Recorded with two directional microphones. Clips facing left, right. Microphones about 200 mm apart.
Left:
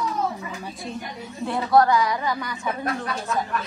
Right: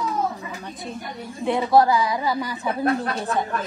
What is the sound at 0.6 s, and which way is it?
Speech, centre (ahead or behind).